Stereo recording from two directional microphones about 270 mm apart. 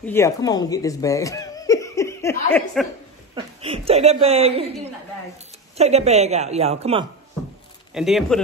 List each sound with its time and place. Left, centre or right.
0.0 s speech: centre
3.3 s speech: right
5.8 s speech: right
7.9 s speech: centre